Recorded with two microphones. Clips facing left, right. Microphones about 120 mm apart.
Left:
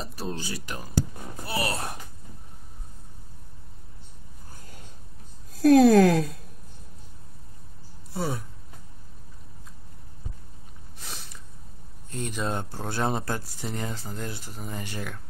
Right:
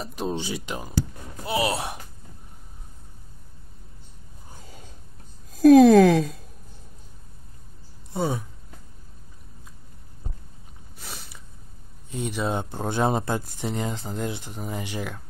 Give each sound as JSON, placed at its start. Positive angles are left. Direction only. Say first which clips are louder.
{"t": 0.1, "sound": "speech", "louder": "right 5 dB", "side_deg": -20}
{"t": 5.5, "sound": "speech", "louder": "right 4 dB", "side_deg": 0}
{"t": 11.0, "sound": "a sound", "louder": "right 1 dB", "side_deg": 0}
{"t": 12.1, "sound": "speech", "louder": "right 3 dB", "side_deg": -10}
{"t": 12.6, "sound": "speech", "louder": "right 4 dB", "side_deg": -20}